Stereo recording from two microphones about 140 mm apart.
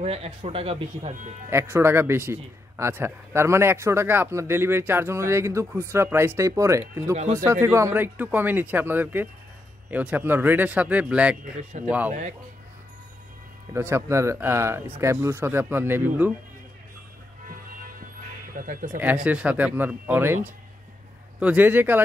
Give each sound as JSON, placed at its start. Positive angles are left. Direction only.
{"t": 0.0, "sound": "speech", "side_deg": -45}
{"t": 1.5, "sound": "speech", "side_deg": -15}
{"t": 11.8, "sound": "speech", "side_deg": -50}
{"t": 13.7, "sound": "speech", "side_deg": -20}
{"t": 18.6, "sound": "speech", "side_deg": -80}
{"t": 18.9, "sound": "speech", "side_deg": -10}
{"t": 21.4, "sound": "speech", "side_deg": -10}